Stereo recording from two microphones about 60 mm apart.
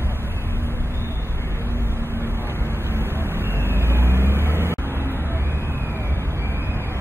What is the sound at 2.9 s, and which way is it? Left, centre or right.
Vehicle, right.